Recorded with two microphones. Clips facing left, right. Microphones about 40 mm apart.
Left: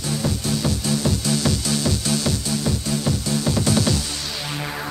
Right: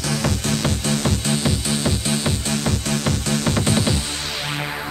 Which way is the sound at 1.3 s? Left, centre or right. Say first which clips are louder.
Even; right.